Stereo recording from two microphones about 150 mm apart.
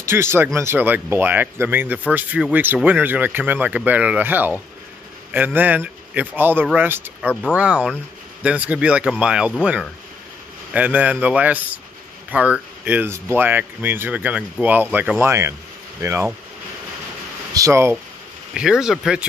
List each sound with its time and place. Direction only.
0.0 s speech: 15° right (ahead or behind)
17.6 s speech: 20° right (ahead or behind)
18.5 s speech: 5° right (ahead or behind)